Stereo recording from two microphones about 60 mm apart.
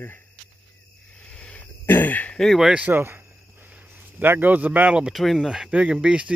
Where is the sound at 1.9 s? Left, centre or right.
Left.